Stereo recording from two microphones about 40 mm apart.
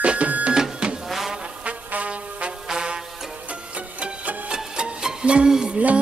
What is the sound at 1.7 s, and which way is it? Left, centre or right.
Music, right.